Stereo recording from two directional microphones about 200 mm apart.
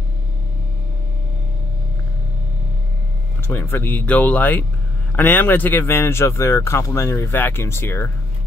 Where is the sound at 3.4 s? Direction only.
10° left (ahead or behind).